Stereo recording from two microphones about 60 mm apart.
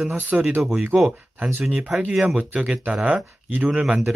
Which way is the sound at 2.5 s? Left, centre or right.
Right.